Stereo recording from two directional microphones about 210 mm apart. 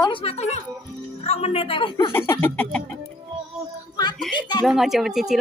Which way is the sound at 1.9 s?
10° left (ahead or behind).